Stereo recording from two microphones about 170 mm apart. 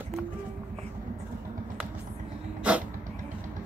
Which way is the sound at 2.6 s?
5° right (ahead or behind).